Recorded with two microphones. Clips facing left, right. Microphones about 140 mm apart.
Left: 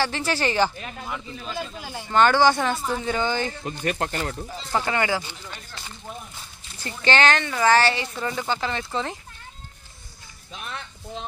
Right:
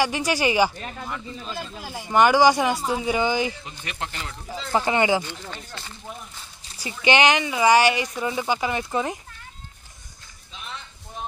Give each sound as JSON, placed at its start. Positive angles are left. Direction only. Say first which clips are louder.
{"t": 0.0, "sound": "speech", "louder": "right 2 dB", "side_deg": -15}
{"t": 1.0, "sound": "speech", "louder": "left 1 dB", "side_deg": 5}
{"t": 3.6, "sound": "speech", "louder": "left 8 dB", "side_deg": 45}
{"t": 4.7, "sound": "speech", "louder": "right 3 dB", "side_deg": -20}
{"t": 6.8, "sound": "speech", "louder": "right 2 dB", "side_deg": -10}
{"t": 10.5, "sound": "a sound", "louder": "left 3 dB", "side_deg": 60}